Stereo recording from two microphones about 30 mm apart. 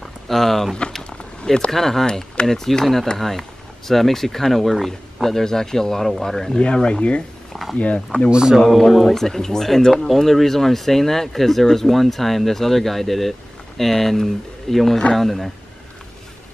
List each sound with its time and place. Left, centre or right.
0.3 s speech: centre
1.4 s speech: left
1.7 s speech: centre
5.4 s speech: centre
6.6 s speech: left
7.7 s speech: left
8.3 s speech: right
9.0 s speech: centre
10.2 s speech: centre